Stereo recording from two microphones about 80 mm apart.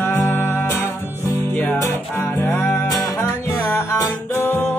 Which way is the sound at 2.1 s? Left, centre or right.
Left.